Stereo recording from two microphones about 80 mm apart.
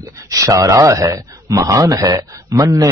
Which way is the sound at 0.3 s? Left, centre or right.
Right.